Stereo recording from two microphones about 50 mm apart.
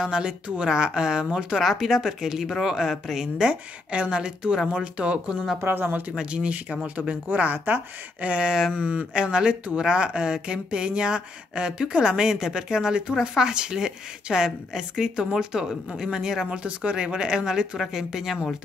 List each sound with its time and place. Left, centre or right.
0.0 s speech: centre
5.6 s speech: right
6.1 s speech: right
15.6 s speech: centre